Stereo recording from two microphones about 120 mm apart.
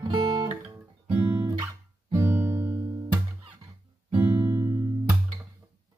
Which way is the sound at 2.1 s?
20° right (ahead or behind).